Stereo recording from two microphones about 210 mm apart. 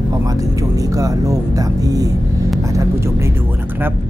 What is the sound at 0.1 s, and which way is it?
Speech, 15° right (ahead or behind).